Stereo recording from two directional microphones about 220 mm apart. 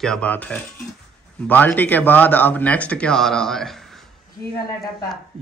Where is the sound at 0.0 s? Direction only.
5° left (ahead or behind).